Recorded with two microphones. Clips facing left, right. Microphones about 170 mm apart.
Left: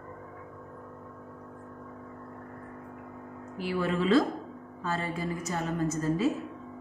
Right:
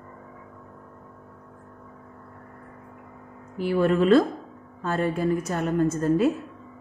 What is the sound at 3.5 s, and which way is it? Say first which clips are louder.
A woman's voice: right 8 dB; 55° right (ahead or behind).